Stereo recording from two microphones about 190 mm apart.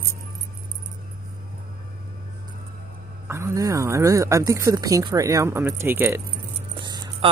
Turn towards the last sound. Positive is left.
turn(degrees=-25)  # may be behind; listen again after turning